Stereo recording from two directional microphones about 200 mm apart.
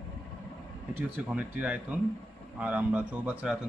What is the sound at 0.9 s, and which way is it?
Speech, 10° right (ahead or behind).